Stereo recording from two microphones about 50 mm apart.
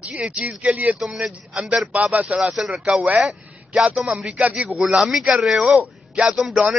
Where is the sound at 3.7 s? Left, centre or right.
Right.